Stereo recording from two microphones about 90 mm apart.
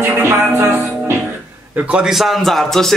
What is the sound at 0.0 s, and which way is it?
Music, 30° right (ahead or behind).